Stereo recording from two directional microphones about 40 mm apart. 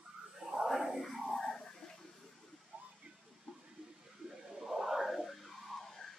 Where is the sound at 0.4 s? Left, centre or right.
Centre.